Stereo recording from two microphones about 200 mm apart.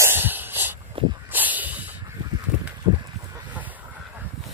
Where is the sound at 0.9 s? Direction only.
25° right (ahead or behind).